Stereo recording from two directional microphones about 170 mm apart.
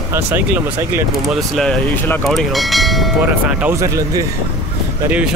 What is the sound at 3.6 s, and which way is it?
Speech, 15° right (ahead or behind).